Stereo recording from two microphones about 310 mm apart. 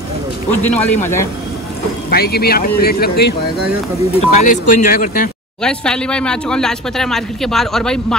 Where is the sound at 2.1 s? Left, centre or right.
Left.